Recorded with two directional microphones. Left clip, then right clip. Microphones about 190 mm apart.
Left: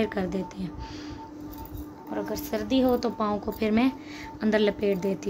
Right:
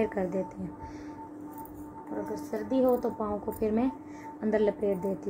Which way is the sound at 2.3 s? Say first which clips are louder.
Left 3 dB; 45° left (ahead or behind).